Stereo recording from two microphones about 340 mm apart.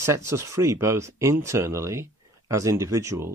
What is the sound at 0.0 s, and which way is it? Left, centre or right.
Speech, centre.